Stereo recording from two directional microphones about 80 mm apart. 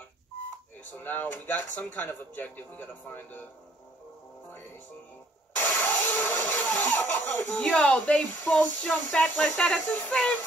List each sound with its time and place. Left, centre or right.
1.0 s speech: left
5.6 s a sound: left
7.1 s speech: left
7.5 s speech: centre